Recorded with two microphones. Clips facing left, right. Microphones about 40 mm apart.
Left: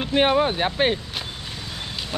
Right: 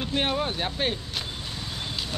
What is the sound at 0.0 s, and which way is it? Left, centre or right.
Speech, left.